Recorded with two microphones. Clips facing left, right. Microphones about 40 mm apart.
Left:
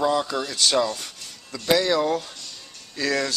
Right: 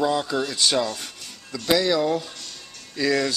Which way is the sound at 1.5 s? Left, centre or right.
Centre.